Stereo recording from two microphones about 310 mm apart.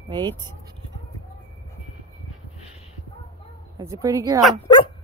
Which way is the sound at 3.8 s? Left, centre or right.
Centre.